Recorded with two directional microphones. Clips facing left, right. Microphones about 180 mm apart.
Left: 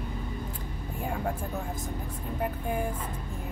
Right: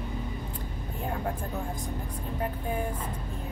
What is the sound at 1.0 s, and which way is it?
Vehicle, 5° left (ahead or behind).